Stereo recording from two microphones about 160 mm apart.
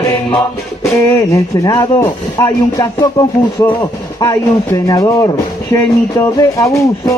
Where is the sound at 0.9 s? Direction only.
20° left (ahead or behind).